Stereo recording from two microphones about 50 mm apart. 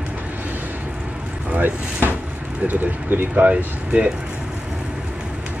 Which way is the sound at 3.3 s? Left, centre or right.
Right.